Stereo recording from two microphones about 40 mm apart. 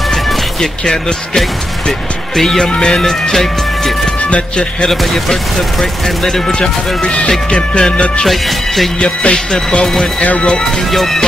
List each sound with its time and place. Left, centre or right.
0.1 s music: centre
2.3 s speech: centre
8.3 s speech: centre
9.0 s speech: left
10.9 s speech: centre